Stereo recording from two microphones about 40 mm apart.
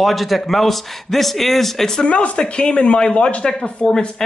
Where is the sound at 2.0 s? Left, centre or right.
Left.